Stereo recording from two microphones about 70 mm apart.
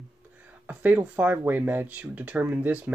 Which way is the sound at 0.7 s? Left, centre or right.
Right.